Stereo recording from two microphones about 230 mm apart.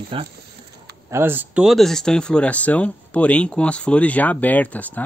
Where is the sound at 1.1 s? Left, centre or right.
Centre.